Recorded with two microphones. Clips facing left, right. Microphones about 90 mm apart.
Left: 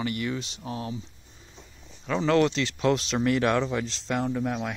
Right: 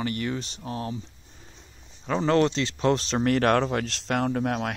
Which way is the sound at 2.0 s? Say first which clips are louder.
Right 1 dB; 30° right (ahead or behind).